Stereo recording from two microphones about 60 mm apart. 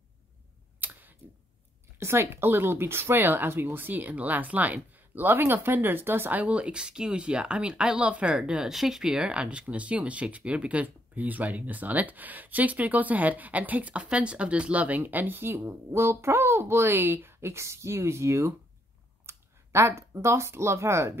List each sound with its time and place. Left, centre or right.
0.7 s clicking: right
2.0 s speech: right
6.4 s speech: centre; by 17.0 s right
17.0 s speech: right